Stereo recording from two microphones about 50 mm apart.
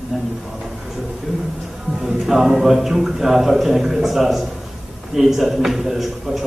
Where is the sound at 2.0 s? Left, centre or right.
Centre.